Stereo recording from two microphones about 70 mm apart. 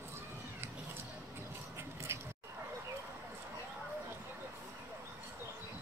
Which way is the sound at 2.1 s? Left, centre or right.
Right.